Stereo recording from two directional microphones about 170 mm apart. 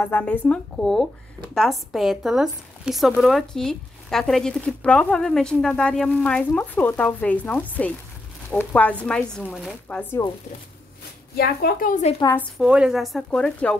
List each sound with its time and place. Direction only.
0.0 s speech: 10° left (ahead or behind)
11.3 s speech: 65° left (ahead or behind)
12.5 s speech: 5° right (ahead or behind)